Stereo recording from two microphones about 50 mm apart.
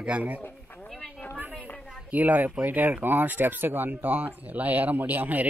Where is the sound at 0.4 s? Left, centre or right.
Left.